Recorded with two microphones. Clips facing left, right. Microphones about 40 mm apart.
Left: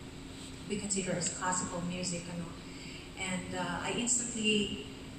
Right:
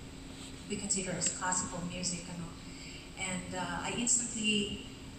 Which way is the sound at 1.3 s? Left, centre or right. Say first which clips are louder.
Left 1 dB; left.